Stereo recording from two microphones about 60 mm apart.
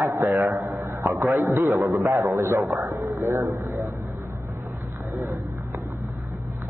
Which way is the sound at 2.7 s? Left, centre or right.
Right.